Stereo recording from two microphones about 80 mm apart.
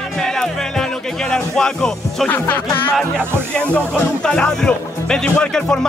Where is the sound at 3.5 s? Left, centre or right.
Centre.